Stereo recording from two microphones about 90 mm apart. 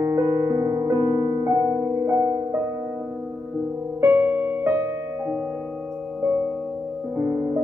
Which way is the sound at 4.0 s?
25° right (ahead or behind).